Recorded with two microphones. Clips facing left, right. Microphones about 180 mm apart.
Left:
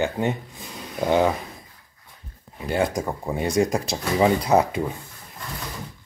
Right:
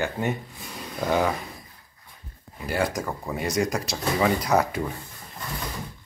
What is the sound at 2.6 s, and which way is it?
Speech, 25° left (ahead or behind).